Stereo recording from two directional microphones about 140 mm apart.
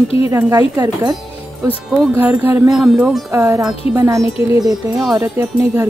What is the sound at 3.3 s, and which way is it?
Speech, 20° right (ahead or behind).